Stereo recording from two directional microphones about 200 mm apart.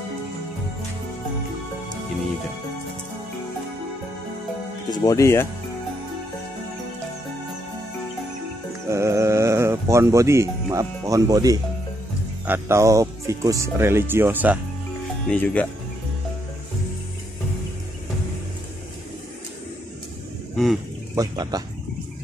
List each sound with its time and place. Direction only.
4.9 s speech: 15° left (ahead or behind)
8.8 s speech: 15° right (ahead or behind)
15.2 s speech: 5° left (ahead or behind)
21.1 s speech: 20° right (ahead or behind)